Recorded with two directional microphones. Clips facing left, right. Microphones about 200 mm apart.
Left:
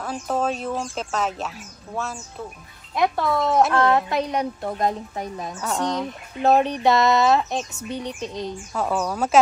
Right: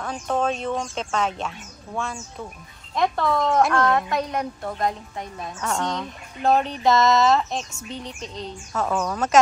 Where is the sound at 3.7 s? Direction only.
25° left (ahead or behind).